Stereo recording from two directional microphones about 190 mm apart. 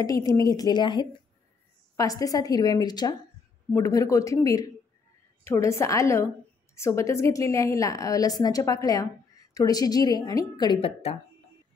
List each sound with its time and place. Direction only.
0.0 s a woman's voice: 20° left (ahead or behind)